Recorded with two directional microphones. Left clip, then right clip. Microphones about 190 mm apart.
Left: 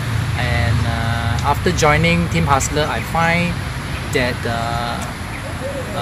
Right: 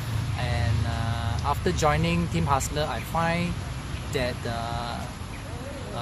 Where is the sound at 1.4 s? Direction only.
15° right (ahead or behind).